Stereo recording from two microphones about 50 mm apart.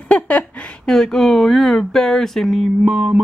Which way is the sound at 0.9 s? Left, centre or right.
Centre.